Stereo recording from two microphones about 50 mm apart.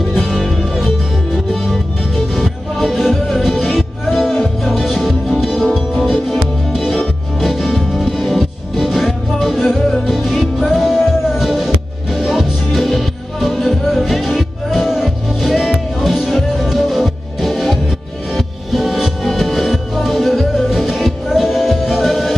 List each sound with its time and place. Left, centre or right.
0.1 s music: centre